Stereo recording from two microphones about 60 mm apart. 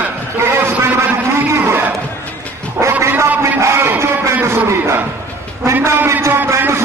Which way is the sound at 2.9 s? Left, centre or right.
Right.